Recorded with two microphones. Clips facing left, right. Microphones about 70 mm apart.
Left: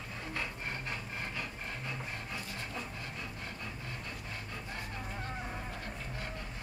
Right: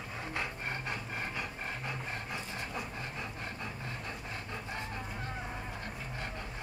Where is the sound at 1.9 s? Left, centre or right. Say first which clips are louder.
Right 2 dB; right.